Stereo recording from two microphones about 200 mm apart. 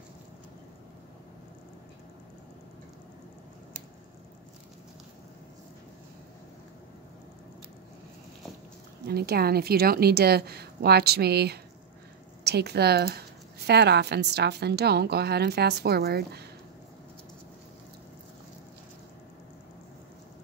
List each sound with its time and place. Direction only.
9.0 s a woman's voice: 55° right (ahead or behind)